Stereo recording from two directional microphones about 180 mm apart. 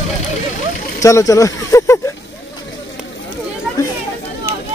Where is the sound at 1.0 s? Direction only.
20° left (ahead or behind).